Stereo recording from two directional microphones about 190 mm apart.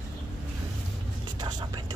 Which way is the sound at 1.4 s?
20° right (ahead or behind).